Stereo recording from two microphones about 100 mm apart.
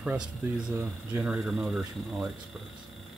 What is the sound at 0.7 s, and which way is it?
Speech, 25° right (ahead or behind).